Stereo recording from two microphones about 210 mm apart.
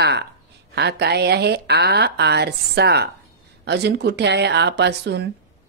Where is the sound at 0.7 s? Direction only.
50° right (ahead or behind).